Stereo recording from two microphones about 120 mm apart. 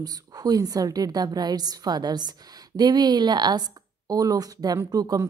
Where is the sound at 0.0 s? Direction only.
30° right (ahead or behind).